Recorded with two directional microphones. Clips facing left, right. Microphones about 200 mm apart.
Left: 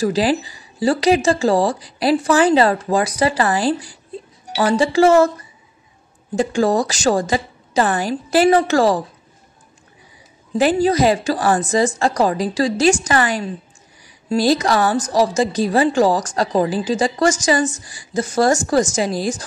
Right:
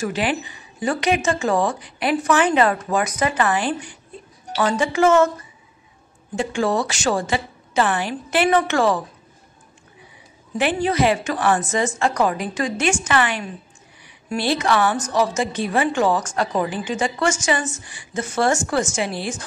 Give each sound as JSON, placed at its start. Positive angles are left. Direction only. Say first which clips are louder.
{"t": 0.0, "sound": "a woman's voice", "louder": "left 6 dB", "side_deg": 35}
{"t": 6.3, "sound": "a woman's voice", "louder": "left 4 dB", "side_deg": 40}
{"t": 10.6, "sound": "a woman's voice", "louder": "left 4 dB", "side_deg": 40}